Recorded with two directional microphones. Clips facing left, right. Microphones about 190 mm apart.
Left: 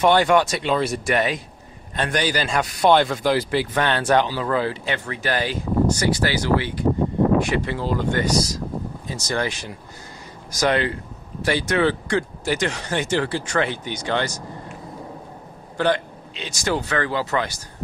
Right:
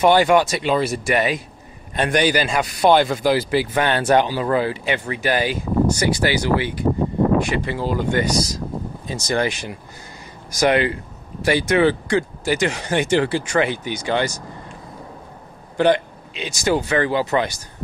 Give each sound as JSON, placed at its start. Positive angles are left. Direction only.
{"t": 0.0, "sound": "a man's voice", "side_deg": -5}
{"t": 7.3, "sound": "a man's voice", "side_deg": 0}
{"t": 15.8, "sound": "a man's voice", "side_deg": -15}